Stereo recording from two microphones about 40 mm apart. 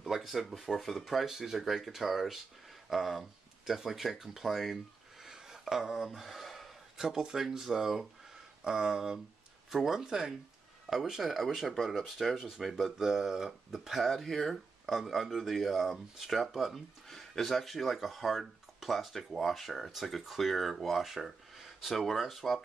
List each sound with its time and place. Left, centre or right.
0.0 s speech: centre
5.2 s a sound: centre
7.0 s speech: centre